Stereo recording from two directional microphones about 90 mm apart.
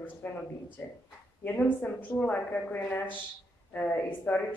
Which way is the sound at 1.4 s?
15° left (ahead or behind).